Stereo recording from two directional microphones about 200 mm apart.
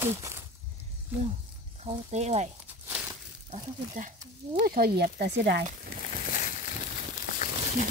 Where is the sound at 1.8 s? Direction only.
30° right (ahead or behind).